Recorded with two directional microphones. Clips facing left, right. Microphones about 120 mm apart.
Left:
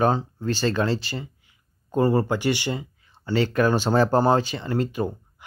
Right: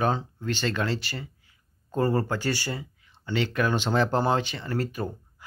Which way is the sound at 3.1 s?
40° left (ahead or behind).